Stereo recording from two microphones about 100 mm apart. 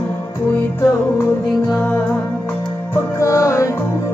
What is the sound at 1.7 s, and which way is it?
Music, 10° left (ahead or behind).